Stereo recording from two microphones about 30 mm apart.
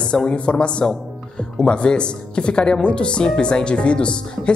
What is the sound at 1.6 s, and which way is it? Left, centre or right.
Speech, left.